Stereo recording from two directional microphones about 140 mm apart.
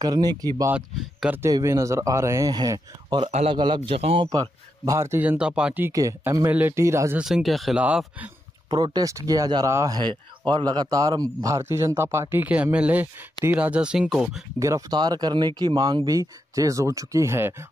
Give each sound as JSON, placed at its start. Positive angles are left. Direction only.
{"t": 0.0, "sound": "speech", "side_deg": -30}
{"t": 0.7, "sound": "speech", "side_deg": -10}
{"t": 3.3, "sound": "a man's voice", "side_deg": -50}
{"t": 3.5, "sound": "a man's voice", "side_deg": -35}
{"t": 4.3, "sound": "speech", "side_deg": -25}
{"t": 5.9, "sound": "speech", "side_deg": -20}
{"t": 7.2, "sound": "speech", "side_deg": -5}
{"t": 8.6, "sound": "speech", "side_deg": -30}
{"t": 14.6, "sound": "speech", "side_deg": -25}